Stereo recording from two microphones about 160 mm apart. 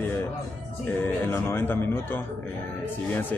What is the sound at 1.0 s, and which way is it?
A man's voice, 15° left (ahead or behind).